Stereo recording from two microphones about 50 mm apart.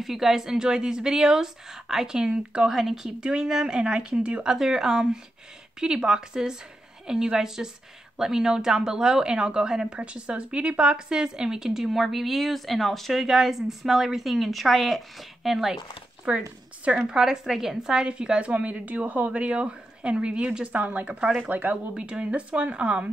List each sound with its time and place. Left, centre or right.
0.0 s a woman's voice: centre
3.2 s a woman's voice: centre
16.3 s a woman's voice: right
17.1 s a woman's voice: centre; by 21.7 s right
21.9 s a woman's voice: right